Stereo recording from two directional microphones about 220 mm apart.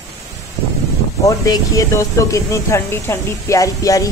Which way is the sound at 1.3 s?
15° left (ahead or behind).